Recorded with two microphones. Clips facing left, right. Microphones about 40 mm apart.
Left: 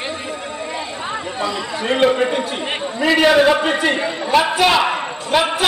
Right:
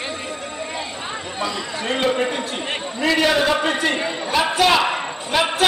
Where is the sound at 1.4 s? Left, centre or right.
Centre.